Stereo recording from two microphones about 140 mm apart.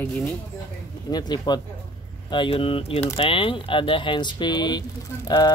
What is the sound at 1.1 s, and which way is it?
Speech, 30° left (ahead or behind).